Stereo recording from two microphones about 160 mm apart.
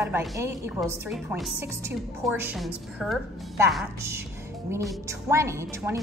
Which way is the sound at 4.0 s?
15° right (ahead or behind).